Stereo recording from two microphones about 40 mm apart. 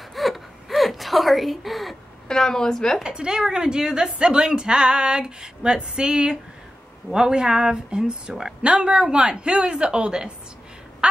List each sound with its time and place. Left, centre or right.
0.1 s gasp: centre
2.2 s a woman's voice: centre
3.0 s a woman's voice: right